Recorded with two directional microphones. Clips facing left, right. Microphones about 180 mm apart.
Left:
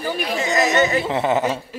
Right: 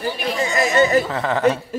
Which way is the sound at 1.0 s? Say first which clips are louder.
Left 3 dB; 20° left (ahead or behind).